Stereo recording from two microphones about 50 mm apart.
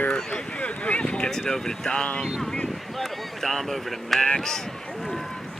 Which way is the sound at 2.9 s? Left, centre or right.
Centre.